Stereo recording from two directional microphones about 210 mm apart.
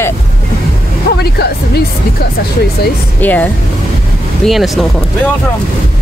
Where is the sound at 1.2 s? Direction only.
50° left (ahead or behind).